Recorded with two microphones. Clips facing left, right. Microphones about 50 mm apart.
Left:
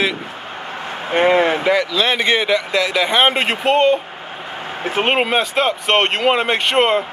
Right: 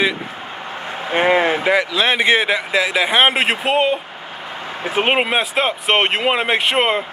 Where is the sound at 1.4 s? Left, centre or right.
Right; by 4.0 s centre.